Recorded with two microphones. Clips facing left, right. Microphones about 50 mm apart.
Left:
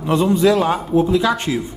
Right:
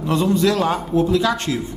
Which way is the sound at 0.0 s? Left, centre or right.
Centre.